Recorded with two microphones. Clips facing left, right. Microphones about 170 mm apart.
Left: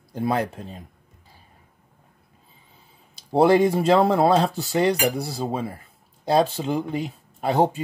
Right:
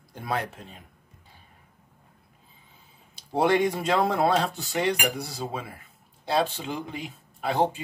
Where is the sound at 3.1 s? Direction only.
35° left (ahead or behind).